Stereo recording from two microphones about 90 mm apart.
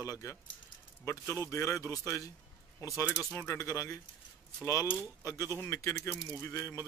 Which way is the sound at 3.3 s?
25° left (ahead or behind).